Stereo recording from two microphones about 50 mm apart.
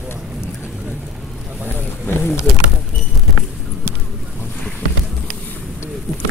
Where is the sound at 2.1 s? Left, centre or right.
Left.